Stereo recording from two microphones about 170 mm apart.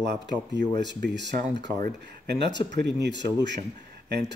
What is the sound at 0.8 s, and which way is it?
Speech, 90° right.